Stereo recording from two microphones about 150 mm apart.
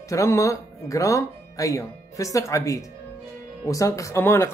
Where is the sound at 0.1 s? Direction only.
20° left (ahead or behind).